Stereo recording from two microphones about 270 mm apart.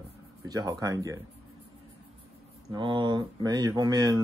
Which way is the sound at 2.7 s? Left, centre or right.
Centre.